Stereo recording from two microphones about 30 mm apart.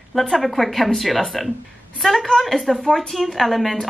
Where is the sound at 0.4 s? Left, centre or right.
Centre.